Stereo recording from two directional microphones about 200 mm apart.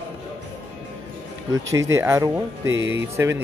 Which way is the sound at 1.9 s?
15° right (ahead or behind).